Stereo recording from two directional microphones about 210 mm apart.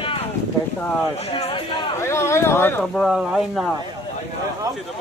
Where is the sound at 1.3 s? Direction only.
25° left (ahead or behind).